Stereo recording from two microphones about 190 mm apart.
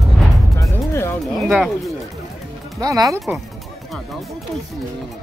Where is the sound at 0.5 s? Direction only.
15° left (ahead or behind).